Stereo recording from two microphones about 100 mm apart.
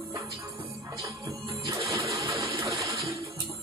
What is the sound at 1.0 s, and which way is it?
Music, 30° right (ahead or behind).